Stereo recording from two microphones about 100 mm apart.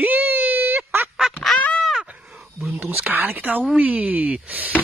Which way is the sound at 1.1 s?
Centre (ahead or behind).